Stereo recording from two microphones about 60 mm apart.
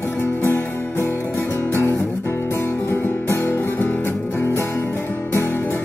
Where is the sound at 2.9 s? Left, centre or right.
Left.